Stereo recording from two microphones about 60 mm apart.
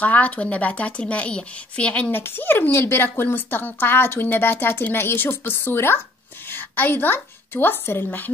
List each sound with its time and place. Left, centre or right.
0.0 s a woman's voice: left
2.0 s a woman's voice: left